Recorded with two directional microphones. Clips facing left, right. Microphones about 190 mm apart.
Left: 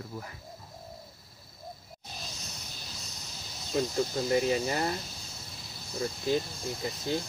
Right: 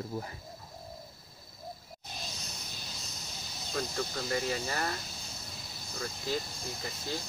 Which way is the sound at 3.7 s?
20° left (ahead or behind).